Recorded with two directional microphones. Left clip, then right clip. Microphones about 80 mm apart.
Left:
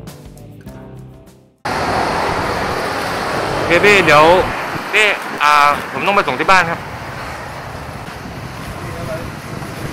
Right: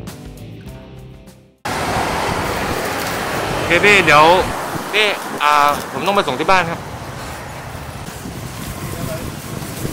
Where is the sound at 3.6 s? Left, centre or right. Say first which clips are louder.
Left 1 dB; right.